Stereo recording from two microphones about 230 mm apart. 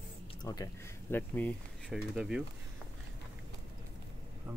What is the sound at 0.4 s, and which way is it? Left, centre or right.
Speech, centre.